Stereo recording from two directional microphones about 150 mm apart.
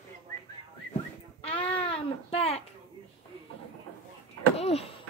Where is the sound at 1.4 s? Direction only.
40° left (ahead or behind).